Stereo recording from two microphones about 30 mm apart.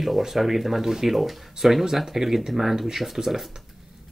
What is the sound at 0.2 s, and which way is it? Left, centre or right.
Speech, centre.